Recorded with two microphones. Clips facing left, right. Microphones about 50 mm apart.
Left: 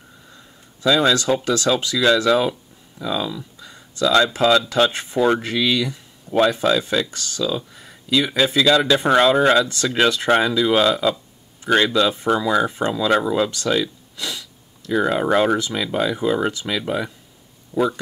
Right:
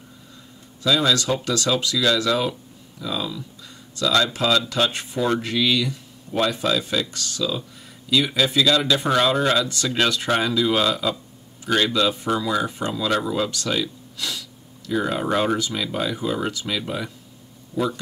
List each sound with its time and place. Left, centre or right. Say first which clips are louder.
0.8 s speech: left 3 dB; left
3.3 s speech: left 2 dB; centre; by 7.1 s left
7.3 s speech: left 3 dB; centre
9.0 s speech: left 5 dB; left; by 11.1 s centre
11.6 s speech: left 4 dB; left
11.9 s speech: left 3 dB; centre
12.6 s speech: left 5 dB; left
13.2 s speech: left 4 dB; centre
17.7 s a man's voice: left 4 dB; left